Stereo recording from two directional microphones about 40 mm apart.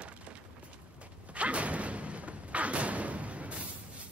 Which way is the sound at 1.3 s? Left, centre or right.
Right.